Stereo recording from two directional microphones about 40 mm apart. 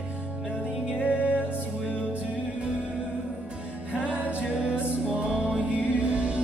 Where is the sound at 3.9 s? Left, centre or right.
Right.